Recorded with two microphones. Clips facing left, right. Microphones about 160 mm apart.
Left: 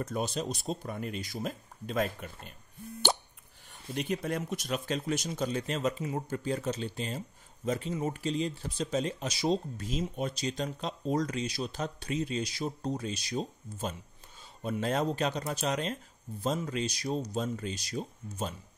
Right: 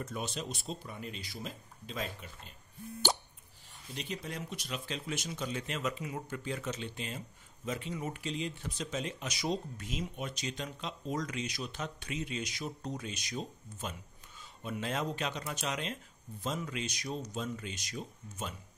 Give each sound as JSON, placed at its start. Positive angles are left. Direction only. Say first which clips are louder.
{"t": 0.0, "sound": "speech", "louder": "left 6 dB", "side_deg": 40}
{"t": 3.0, "sound": "a sound", "louder": "left 3 dB", "side_deg": 60}
{"t": 3.9, "sound": "speech", "louder": "left 8 dB", "side_deg": 55}